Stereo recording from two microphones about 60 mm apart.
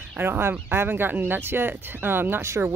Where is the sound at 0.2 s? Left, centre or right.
Right.